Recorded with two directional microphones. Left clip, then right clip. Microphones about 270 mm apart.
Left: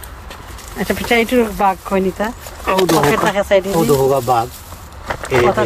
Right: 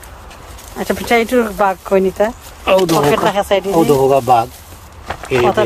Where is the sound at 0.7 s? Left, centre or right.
Centre.